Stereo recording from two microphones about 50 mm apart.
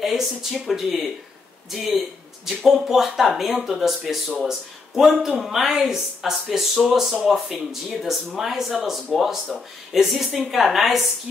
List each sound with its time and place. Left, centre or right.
0.0 s speech: centre
2.4 s speech: centre